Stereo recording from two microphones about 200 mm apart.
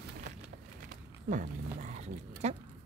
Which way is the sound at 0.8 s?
40° right (ahead or behind).